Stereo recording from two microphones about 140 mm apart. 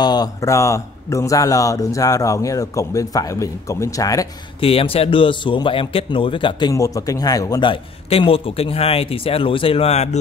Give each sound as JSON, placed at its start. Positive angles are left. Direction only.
{"t": 0.0, "sound": "a man's voice", "side_deg": 30}
{"t": 4.6, "sound": "a man's voice", "side_deg": 40}
{"t": 6.7, "sound": "a man's voice", "side_deg": 25}